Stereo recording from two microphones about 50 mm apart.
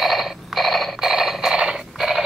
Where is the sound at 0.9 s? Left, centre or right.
Centre.